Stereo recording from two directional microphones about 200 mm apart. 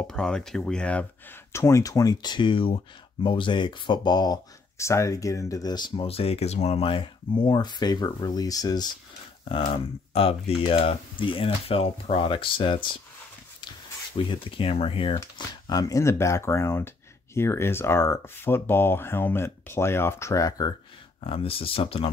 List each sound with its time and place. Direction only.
0.0 s speech: 5° left (ahead or behind); by 12.9 s 25° left (ahead or behind)
14.1 s speech: 25° left (ahead or behind)
21.2 s speech: 30° left (ahead or behind)